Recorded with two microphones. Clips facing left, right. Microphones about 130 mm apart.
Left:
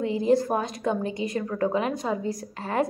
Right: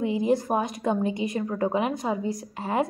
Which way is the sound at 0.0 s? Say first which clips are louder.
Left 2 dB; 15° right (ahead or behind).